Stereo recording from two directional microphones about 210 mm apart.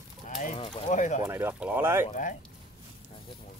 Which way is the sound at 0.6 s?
35° left (ahead or behind).